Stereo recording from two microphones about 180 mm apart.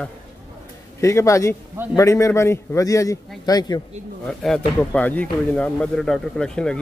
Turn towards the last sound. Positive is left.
turn(degrees=5)  # may be behind; listen again after turning